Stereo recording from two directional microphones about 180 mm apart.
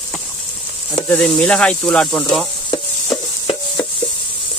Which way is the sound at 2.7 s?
25° left (ahead or behind).